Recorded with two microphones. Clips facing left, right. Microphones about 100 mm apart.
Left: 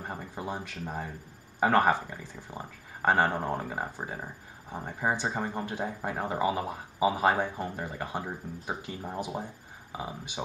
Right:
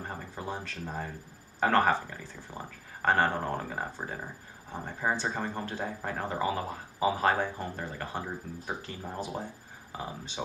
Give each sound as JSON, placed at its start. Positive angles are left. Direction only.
{"t": 0.0, "sound": "speech", "side_deg": 15}